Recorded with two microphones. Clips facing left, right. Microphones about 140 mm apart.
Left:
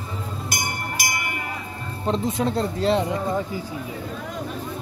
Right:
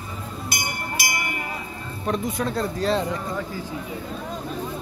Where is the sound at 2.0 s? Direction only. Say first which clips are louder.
Left 2 dB; 25° left (ahead or behind).